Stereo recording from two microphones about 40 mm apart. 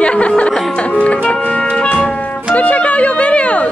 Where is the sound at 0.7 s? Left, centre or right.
Left.